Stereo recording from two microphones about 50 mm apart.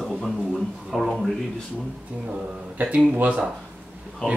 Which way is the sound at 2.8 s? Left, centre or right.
Right.